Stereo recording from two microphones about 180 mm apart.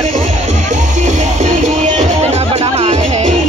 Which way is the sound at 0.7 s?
40° right (ahead or behind).